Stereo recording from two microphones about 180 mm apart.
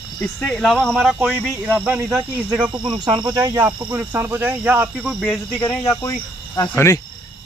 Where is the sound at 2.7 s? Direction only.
25° right (ahead or behind); by 5.1 s 10° right (ahead or behind).